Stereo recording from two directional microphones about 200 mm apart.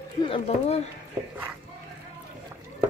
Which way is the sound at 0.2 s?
30° left (ahead or behind).